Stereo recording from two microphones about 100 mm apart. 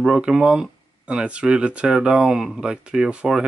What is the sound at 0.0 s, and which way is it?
Speech, 10° right (ahead or behind).